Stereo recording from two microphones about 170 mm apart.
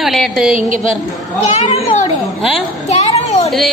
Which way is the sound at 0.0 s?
Centre (ahead or behind).